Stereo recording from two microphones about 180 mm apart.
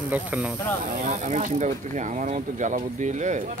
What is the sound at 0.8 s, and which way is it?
Speech, 45° right (ahead or behind).